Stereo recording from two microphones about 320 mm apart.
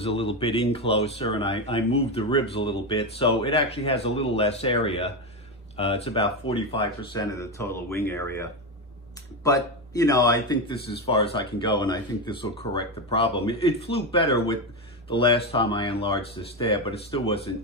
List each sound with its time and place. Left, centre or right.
0.0 s a man's voice: centre